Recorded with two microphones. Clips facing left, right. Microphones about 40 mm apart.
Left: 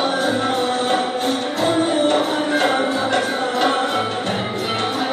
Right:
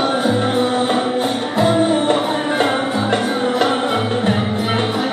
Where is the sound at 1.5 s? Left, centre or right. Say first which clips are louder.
Right 4 dB; centre.